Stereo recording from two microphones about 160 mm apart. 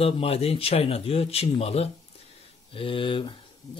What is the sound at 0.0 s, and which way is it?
Speech, 40° left (ahead or behind).